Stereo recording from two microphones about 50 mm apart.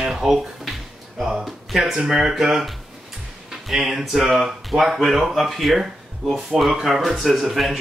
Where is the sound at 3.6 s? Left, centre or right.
Centre.